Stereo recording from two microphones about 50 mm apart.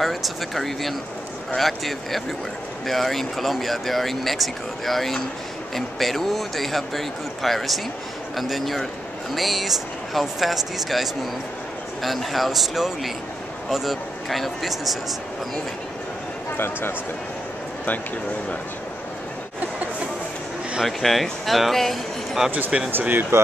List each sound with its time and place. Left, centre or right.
0.0 s speech: centre
16.5 s speech: left
20.8 s speech: centre
22.8 s speech: right